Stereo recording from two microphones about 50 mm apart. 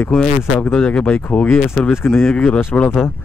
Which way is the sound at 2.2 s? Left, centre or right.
Left.